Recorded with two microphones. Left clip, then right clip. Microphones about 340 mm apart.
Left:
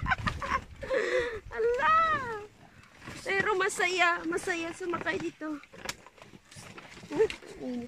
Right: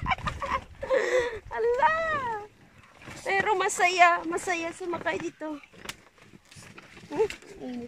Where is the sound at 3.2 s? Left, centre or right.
Centre.